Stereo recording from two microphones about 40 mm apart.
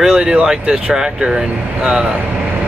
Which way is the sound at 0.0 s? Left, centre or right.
Centre.